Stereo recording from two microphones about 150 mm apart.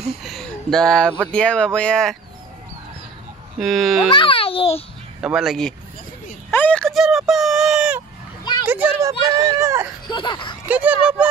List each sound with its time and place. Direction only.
0.2 s speech: centre (ahead or behind)
3.5 s speech: centre (ahead or behind)
4.1 s a child's voice: 35° left (ahead or behind)
5.2 s a child's voice: centre (ahead or behind); by 9.8 s 20° right (ahead or behind)
10.0 s speech: 30° left (ahead or behind)
10.7 s a child's voice: 10° right (ahead or behind)